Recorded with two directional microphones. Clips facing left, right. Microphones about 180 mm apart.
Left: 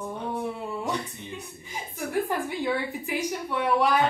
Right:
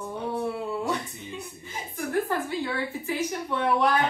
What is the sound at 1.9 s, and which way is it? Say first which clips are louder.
A woman's voice: right 1 dB; 15° left (ahead or behind).